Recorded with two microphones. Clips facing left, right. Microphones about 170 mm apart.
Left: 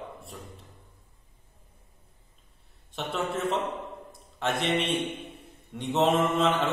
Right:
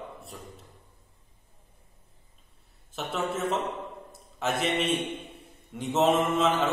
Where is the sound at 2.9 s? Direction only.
Centre (ahead or behind).